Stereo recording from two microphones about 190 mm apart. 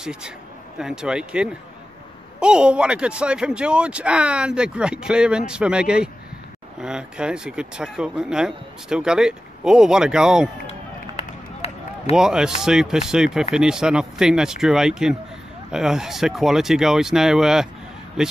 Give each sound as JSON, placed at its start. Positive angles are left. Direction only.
{"t": 0.0, "sound": "speech", "side_deg": -5}
{"t": 10.7, "sound": "run", "side_deg": 35}
{"t": 12.2, "sound": "speech", "side_deg": -5}